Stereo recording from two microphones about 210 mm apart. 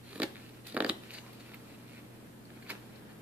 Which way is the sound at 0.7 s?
5° right (ahead or behind).